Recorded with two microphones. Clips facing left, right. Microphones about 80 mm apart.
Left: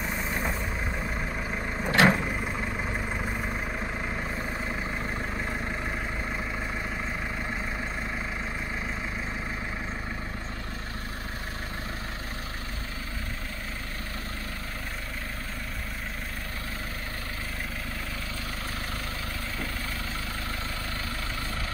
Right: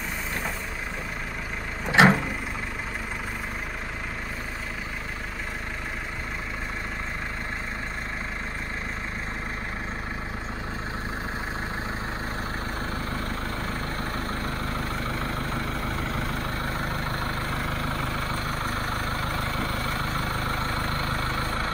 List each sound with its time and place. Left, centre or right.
1.9 s vehicle: right